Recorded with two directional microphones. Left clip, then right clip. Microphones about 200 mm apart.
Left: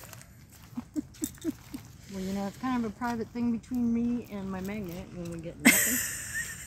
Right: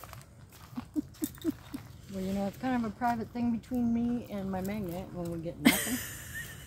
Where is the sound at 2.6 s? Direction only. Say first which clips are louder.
Left 3 dB; 50° right (ahead or behind).